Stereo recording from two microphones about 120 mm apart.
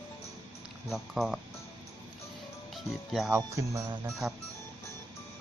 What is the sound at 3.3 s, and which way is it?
Speech, 25° right (ahead or behind).